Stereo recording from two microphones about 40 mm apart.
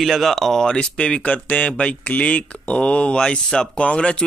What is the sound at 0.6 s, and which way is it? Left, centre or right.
Speech, left.